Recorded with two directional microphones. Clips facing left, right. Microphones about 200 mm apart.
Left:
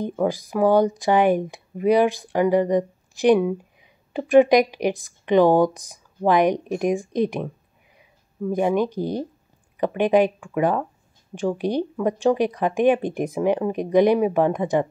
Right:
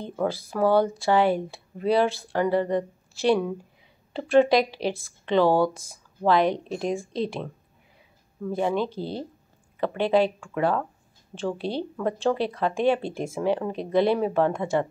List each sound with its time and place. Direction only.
0.0 s speech: 15° left (ahead or behind)